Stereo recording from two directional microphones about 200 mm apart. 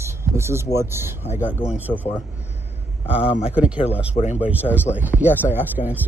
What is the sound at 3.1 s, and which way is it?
Speech, 5° right (ahead or behind).